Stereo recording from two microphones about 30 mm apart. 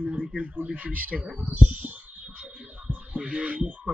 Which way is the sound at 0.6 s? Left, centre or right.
Right.